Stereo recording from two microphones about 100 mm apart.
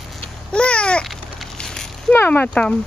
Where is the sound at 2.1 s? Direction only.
15° left (ahead or behind).